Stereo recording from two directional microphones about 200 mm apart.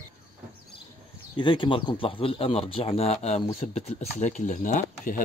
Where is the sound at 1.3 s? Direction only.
25° left (ahead or behind).